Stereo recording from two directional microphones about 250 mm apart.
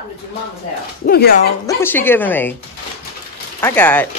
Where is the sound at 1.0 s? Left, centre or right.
Left.